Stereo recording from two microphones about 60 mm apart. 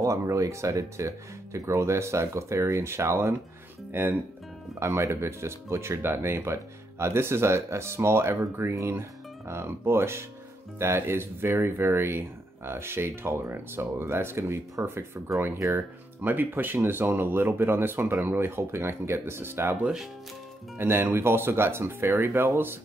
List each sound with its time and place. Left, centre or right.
0.0 s speech: right
3.9 s speech: right
4.7 s speech: right
16.2 s speech: right